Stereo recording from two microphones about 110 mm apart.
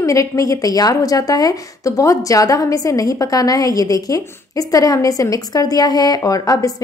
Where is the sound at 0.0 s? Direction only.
30° left (ahead or behind).